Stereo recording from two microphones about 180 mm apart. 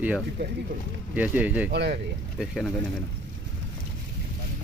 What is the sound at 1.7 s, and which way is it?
Speech, 70° right (ahead or behind).